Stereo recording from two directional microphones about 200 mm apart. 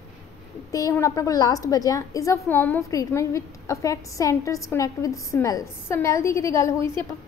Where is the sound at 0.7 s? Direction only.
15° left (ahead or behind).